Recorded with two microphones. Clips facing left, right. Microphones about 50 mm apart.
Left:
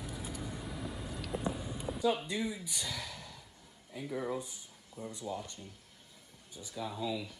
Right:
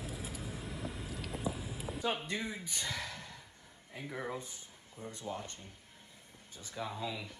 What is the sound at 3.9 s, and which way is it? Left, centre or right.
Speech, right.